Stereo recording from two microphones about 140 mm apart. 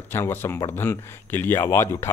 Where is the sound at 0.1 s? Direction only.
15° left (ahead or behind).